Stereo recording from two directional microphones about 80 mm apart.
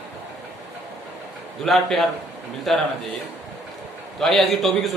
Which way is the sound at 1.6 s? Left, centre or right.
Centre.